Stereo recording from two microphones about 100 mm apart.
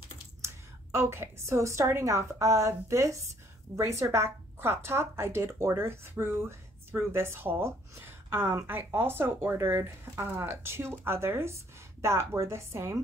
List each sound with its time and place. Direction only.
0.9 s a woman's voice: 25° right (ahead or behind)